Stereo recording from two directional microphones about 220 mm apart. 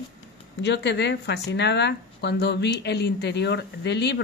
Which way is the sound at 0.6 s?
50° left (ahead or behind).